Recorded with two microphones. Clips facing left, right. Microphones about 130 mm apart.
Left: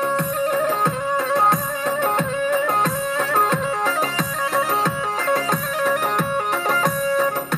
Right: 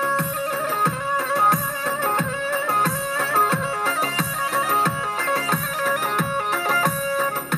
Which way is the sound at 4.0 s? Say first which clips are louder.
Left 2 dB; 15° left (ahead or behind).